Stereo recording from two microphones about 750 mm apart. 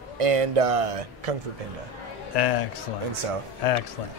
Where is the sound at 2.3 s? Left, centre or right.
Left.